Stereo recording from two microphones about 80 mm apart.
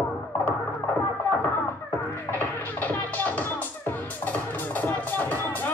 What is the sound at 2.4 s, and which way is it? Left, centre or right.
Music, left.